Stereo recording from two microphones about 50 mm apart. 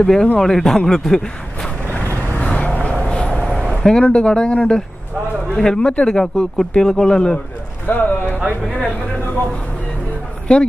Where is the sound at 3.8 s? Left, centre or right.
Centre.